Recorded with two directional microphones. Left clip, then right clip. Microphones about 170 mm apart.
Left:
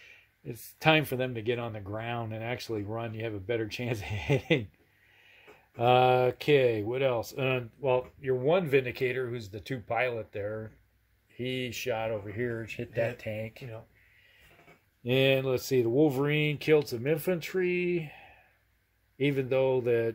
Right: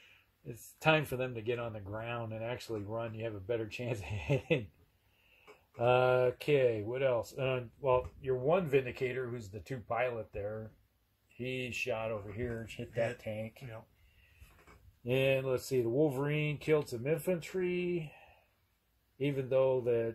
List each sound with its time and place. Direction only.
0.5 s speech: 15° left (ahead or behind)
5.8 s speech: 15° left (ahead or behind)
8.2 s speech: 5° left (ahead or behind)
15.0 s speech: 15° left (ahead or behind)
19.1 s speech: 15° left (ahead or behind)